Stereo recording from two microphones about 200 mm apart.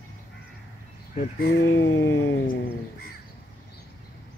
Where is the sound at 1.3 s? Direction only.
50° left (ahead or behind).